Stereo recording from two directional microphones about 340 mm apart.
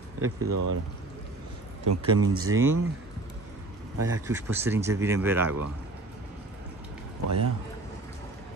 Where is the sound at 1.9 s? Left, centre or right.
Right.